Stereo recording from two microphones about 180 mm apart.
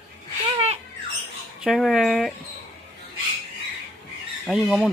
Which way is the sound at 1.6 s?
Centre (ahead or behind).